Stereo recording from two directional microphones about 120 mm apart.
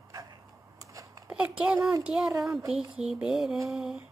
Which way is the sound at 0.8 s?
30° right (ahead or behind).